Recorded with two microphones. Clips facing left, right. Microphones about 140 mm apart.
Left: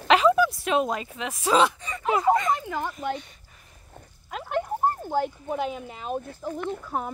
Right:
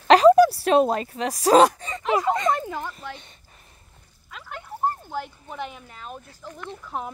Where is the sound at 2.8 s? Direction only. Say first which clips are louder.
Left 6 dB; 20° left (ahead or behind).